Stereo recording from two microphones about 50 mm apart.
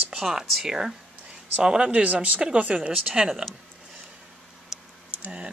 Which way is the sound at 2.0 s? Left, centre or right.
Right.